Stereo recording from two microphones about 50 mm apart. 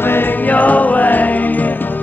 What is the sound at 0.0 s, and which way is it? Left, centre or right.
Music, left.